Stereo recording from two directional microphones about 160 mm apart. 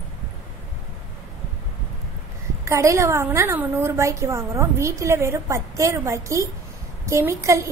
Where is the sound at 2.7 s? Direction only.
20° right (ahead or behind).